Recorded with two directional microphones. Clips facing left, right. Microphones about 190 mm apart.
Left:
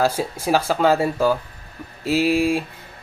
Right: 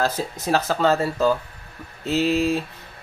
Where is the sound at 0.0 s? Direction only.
10° left (ahead or behind).